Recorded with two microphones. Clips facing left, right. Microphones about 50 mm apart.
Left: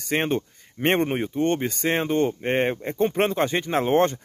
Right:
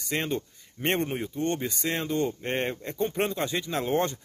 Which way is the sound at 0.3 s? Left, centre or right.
Left.